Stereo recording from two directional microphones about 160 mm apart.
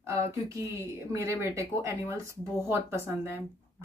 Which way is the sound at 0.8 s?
15° right (ahead or behind).